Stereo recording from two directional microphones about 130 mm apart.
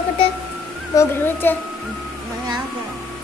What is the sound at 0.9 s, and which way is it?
Speech, 20° left (ahead or behind).